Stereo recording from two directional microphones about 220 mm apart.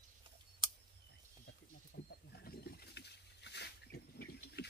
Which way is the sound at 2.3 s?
45° left (ahead or behind).